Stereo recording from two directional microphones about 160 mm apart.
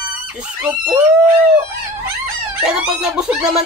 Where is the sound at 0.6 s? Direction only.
10° right (ahead or behind).